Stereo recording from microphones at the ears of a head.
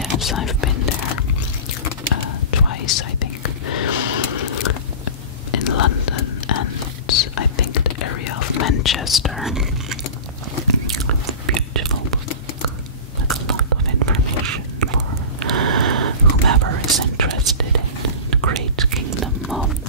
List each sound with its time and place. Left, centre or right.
0.1 s whispering: left
11.4 s whispering: right
13.3 s whispering: right